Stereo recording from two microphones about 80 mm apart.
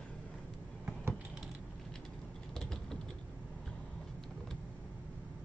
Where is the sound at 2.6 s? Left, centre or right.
Centre.